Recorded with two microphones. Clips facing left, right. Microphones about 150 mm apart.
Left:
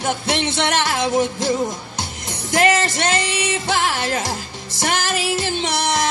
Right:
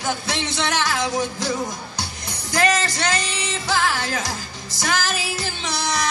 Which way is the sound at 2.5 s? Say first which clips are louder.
Left 3 dB; 25° left (ahead or behind).